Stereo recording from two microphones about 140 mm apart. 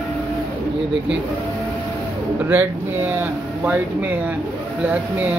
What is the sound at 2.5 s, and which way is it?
Speech, 15° right (ahead or behind).